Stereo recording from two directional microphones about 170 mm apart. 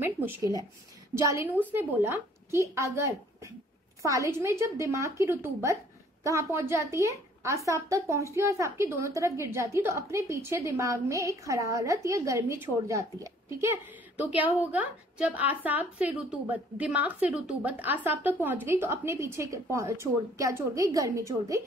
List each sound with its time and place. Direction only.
0.0 s a woman's voice: 15° right (ahead or behind)